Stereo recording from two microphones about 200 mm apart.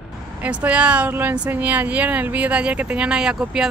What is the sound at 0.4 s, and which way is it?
Speech, 5° right (ahead or behind).